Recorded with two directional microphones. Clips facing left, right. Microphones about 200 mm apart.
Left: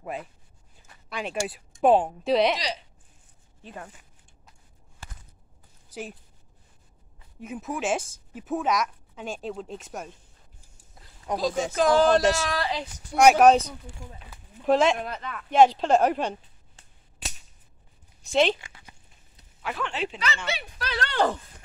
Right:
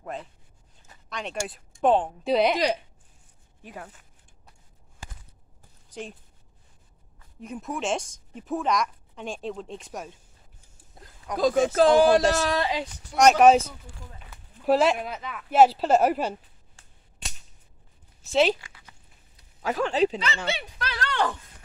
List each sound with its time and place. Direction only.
0.0 s speech: 10° left (ahead or behind)
2.2 s speech: centre (ahead or behind)
3.6 s speech: 5° right (ahead or behind)
5.9 s a sound: 5° left (ahead or behind)
7.3 s speech: 5° left (ahead or behind)
11.3 s speech: 50° right (ahead or behind)
11.9 s speech: 10° right (ahead or behind)
13.1 s speech: 5° left (ahead or behind)
14.3 s speech: 5° right (ahead or behind)
18.2 s speech: 5° right (ahead or behind)
18.6 s a sound: 25° left (ahead or behind)
19.6 s speech: 40° right (ahead or behind)
20.9 s speech: 35° left (ahead or behind)